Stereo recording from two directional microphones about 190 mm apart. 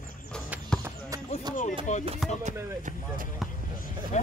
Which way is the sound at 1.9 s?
40° left (ahead or behind).